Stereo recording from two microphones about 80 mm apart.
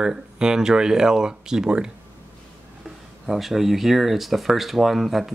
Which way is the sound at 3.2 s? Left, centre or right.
Centre.